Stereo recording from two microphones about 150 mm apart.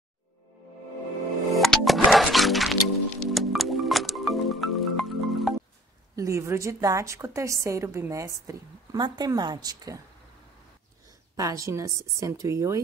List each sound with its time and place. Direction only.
1.5 s music: centre (ahead or behind)
6.1 s a woman's voice: 20° right (ahead or behind)
11.3 s a woman's voice: 20° right (ahead or behind)